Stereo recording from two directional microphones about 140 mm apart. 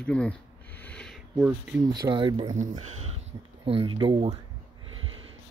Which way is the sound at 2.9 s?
50° right (ahead or behind).